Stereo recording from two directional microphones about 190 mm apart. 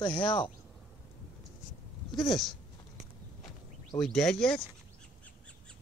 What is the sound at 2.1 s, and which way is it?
Speech, centre (ahead or behind).